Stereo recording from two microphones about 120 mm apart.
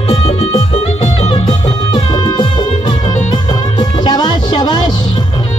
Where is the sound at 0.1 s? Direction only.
55° left (ahead or behind).